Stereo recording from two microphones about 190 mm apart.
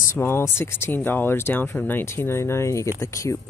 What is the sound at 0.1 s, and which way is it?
Speech, 15° left (ahead or behind).